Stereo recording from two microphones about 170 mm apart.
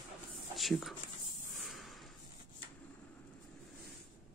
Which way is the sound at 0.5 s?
Centre (ahead or behind).